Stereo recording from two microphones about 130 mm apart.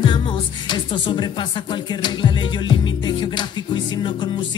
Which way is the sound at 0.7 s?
35° left (ahead or behind).